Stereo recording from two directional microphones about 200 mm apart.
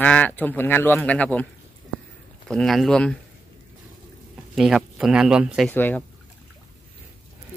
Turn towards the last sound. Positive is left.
turn(degrees=10)  # may be behind; listen again after turning